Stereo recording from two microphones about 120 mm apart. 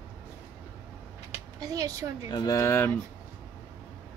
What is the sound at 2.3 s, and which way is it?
Speech, 30° left (ahead or behind).